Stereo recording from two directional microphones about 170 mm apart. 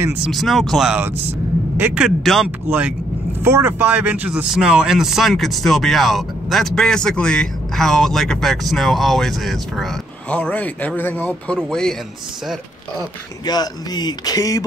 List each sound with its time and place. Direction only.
0.0 s speech: 5° right (ahead or behind)
3.4 s speech: 15° right (ahead or behind); by 11.9 s 5° left (ahead or behind)
13.5 s speech: 25° left (ahead or behind)